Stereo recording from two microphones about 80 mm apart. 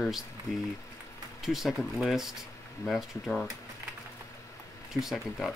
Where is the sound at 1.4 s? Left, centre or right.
Centre.